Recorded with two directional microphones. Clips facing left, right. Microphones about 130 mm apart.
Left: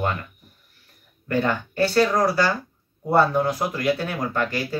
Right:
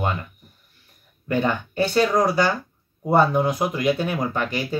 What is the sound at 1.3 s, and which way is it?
Speech, 15° right (ahead or behind).